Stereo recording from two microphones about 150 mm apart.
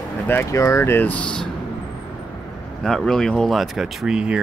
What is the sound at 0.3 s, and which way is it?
Speech, 20° left (ahead or behind).